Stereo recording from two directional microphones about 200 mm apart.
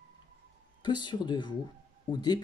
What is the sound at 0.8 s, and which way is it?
Speech, 20° left (ahead or behind).